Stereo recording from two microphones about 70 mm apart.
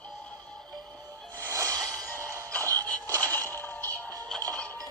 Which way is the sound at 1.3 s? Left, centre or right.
Right.